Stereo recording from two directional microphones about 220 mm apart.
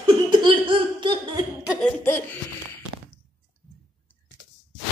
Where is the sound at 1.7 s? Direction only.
5° left (ahead or behind).